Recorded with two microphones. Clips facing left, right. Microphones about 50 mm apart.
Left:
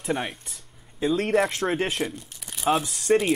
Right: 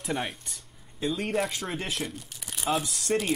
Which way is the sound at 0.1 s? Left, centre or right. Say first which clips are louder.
Left 4 dB; centre.